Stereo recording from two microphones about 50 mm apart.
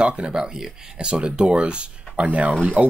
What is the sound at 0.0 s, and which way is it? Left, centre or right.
Speech, centre.